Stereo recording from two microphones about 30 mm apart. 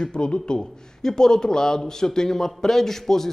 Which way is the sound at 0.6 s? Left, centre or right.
Centre.